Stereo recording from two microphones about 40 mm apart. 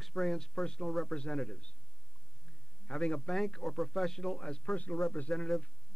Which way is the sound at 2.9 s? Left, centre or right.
Left.